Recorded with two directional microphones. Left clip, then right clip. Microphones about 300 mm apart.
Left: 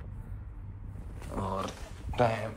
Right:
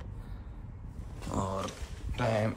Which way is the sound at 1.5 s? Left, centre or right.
Centre.